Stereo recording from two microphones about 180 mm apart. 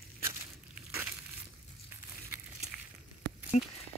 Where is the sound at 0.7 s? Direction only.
5° right (ahead or behind).